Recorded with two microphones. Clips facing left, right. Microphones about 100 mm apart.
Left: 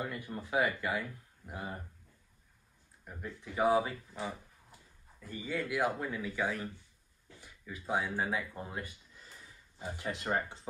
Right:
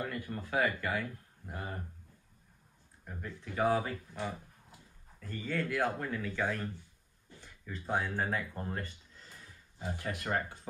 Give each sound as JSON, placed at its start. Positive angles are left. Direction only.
{"t": 0.0, "sound": "speech", "side_deg": 20}
{"t": 3.3, "sound": "speech", "side_deg": 15}
{"t": 5.2, "sound": "speech", "side_deg": 10}